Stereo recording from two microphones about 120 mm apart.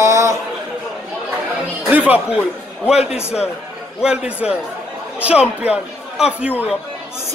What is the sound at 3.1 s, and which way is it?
Speech, 60° left (ahead or behind).